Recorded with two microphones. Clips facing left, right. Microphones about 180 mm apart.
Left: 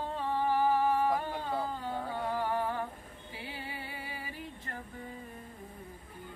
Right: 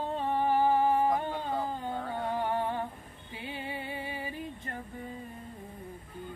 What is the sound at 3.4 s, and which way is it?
Music, 20° right (ahead or behind).